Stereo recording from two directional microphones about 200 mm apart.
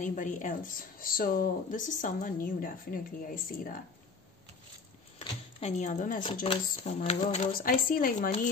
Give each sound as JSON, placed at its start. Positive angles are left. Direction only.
{"t": 0.0, "sound": "speech", "side_deg": 40}
{"t": 5.6, "sound": "speech", "side_deg": 35}
{"t": 6.4, "sound": "speech", "side_deg": 25}
{"t": 7.5, "sound": "speech", "side_deg": 45}